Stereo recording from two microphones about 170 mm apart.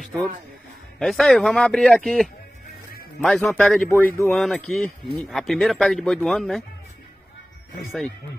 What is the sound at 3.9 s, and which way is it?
Speech, 15° left (ahead or behind).